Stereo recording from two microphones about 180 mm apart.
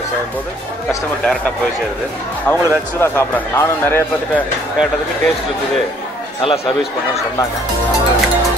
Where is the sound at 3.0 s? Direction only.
15° left (ahead or behind).